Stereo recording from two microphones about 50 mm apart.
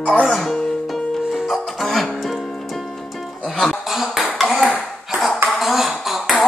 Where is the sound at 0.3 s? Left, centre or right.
Centre.